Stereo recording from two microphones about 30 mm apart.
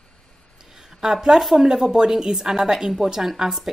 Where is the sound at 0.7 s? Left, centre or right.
Centre.